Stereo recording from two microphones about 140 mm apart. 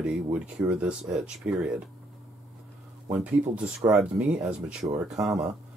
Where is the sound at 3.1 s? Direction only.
10° right (ahead or behind).